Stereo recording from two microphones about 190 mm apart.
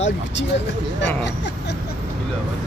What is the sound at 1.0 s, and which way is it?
Speech, 70° left (ahead or behind).